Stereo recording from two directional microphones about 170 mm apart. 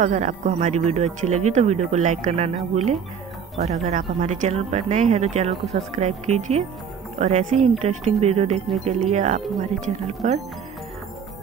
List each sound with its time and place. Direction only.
0.0 s speech: 45° right (ahead or behind)